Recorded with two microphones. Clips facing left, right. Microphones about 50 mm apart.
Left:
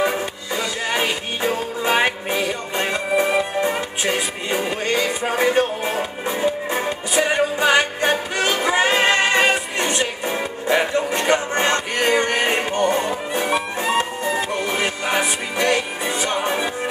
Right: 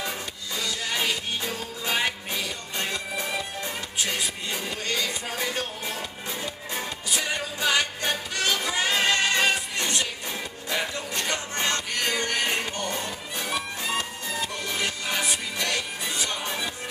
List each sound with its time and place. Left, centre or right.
0.0 s music: left